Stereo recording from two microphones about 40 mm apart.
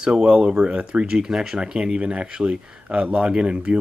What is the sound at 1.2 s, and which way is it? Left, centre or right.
Speech, centre.